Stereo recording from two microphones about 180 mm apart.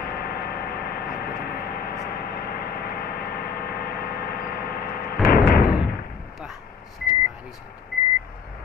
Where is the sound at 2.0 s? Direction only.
55° left (ahead or behind).